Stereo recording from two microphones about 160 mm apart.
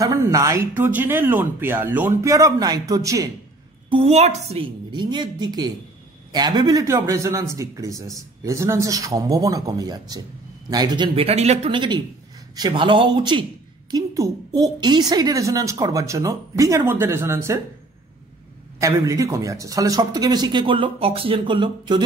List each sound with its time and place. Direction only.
0.0 s speech: 20° right (ahead or behind)
3.9 s speech: 40° right (ahead or behind)
4.9 s a woman's voice: 30° right (ahead or behind)
18.8 s a woman's voice: 20° right (ahead or behind)